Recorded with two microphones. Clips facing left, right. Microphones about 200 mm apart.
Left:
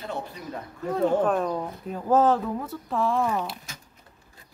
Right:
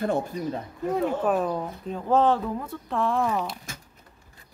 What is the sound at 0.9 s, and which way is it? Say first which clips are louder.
Speech: left 2 dB; 5° right (ahead or behind).